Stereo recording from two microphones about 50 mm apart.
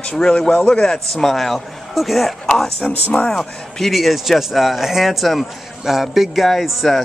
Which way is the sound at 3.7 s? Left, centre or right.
Centre.